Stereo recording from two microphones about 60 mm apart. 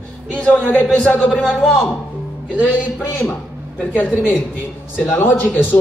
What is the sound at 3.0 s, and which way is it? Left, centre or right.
Speech, left.